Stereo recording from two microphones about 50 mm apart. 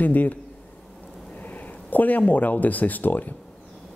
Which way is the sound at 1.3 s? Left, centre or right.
Left.